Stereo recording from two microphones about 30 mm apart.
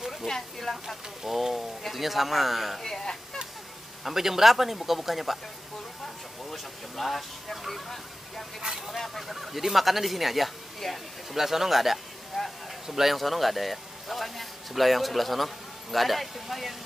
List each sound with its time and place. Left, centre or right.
0.3 s speech: centre
0.8 s speech: centre
2.8 s speech: centre
4.0 s speech: centre
6.5 s speech: centre
8.7 s speech: centre
11.3 s speech: centre
12.3 s a sound: centre
12.8 s speech: centre
13.1 s speech: centre